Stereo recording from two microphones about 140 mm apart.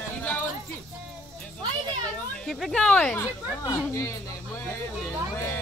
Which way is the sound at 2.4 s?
Centre (ahead or behind).